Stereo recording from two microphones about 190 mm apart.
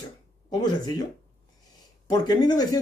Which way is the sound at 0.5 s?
20° left (ahead or behind).